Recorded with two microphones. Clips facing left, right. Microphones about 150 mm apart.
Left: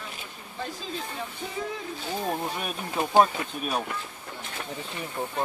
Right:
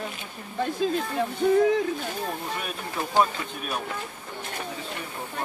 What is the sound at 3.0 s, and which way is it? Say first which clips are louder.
Speech: left 4 dB; 20° left (ahead or behind).